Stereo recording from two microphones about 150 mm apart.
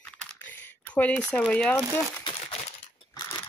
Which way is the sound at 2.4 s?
45° left (ahead or behind).